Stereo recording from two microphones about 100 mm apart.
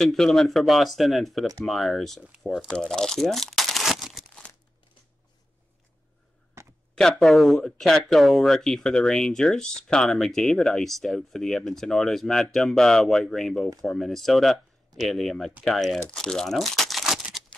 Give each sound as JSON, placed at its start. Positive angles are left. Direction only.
{"t": 0.0, "sound": "speech", "side_deg": 0}
{"t": 6.6, "sound": "a sound", "side_deg": -25}
{"t": 7.0, "sound": "speech", "side_deg": 5}